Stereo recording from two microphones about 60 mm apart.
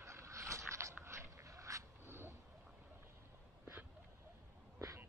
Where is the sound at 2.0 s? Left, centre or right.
Right.